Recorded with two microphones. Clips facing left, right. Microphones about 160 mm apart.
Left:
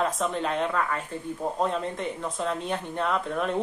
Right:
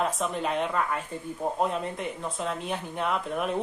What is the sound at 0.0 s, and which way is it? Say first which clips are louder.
Speech: left 1 dB; 5° right (ahead or behind).